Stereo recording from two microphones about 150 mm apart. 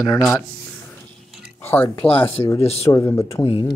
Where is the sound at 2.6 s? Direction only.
45° left (ahead or behind).